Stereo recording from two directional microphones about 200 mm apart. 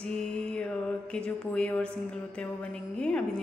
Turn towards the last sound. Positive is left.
turn(degrees=5)  # may be behind; listen again after turning